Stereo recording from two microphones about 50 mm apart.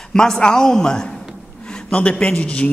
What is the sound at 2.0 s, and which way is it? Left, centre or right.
Speech, left.